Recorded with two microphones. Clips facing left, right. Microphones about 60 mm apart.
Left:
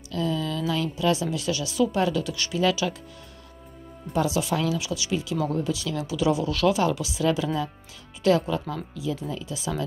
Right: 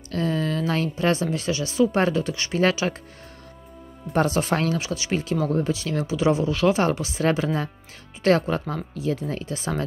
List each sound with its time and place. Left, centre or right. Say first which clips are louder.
0.1 s speech: right 3 dB; right
4.1 s speech: right 3 dB; right
6.8 s speech: right 2 dB; right
9.2 s speech: right 3 dB; right